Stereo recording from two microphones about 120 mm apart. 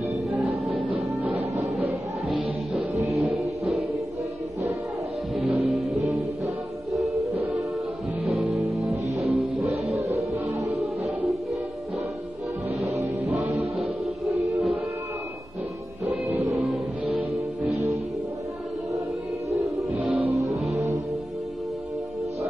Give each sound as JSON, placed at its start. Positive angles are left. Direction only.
{"t": 0.5, "sound": "music", "side_deg": -50}
{"t": 3.1, "sound": "music", "side_deg": 0}
{"t": 5.3, "sound": "music", "side_deg": 0}
{"t": 8.4, "sound": "music", "side_deg": 0}
{"t": 9.8, "sound": "music", "side_deg": -60}
{"t": 10.3, "sound": "music", "side_deg": -25}
{"t": 14.0, "sound": "music", "side_deg": 0}
{"t": 16.3, "sound": "music", "side_deg": -25}
{"t": 16.5, "sound": "music", "side_deg": 0}
{"t": 20.3, "sound": "music", "side_deg": 0}